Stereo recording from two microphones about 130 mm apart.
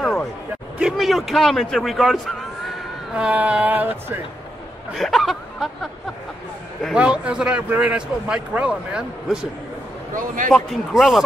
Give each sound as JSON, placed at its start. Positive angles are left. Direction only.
{"t": 0.0, "sound": "a sound", "side_deg": 0}
{"t": 0.8, "sound": "a man's voice", "side_deg": 0}
{"t": 3.2, "sound": "a man's voice", "side_deg": -10}
{"t": 4.9, "sound": "a man's voice", "side_deg": 0}
{"t": 10.1, "sound": "a man's voice", "side_deg": -90}
{"t": 10.5, "sound": "a man's voice", "side_deg": 0}